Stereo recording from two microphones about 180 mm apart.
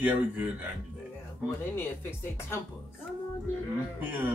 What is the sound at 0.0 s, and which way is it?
Music, 10° right (ahead or behind).